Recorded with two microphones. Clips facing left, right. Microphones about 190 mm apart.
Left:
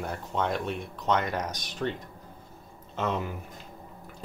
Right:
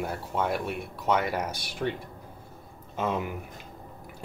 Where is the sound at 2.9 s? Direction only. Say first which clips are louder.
Right 1 dB; 10° right (ahead or behind).